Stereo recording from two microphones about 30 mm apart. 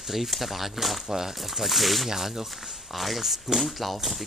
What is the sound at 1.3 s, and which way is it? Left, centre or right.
Speech, centre.